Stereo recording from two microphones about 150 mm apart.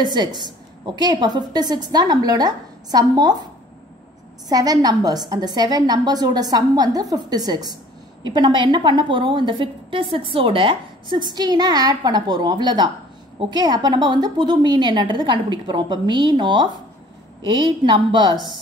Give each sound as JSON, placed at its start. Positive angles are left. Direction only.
{"t": 0.0, "sound": "a woman's voice", "side_deg": -30}
{"t": 4.5, "sound": "a woman's voice", "side_deg": -25}